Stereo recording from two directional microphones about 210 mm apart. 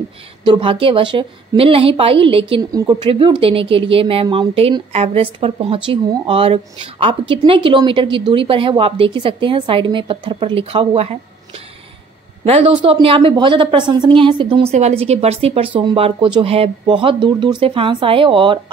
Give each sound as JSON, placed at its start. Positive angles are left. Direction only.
{"t": 0.5, "sound": "a woman's voice", "side_deg": -25}
{"t": 12.4, "sound": "a woman's voice", "side_deg": -25}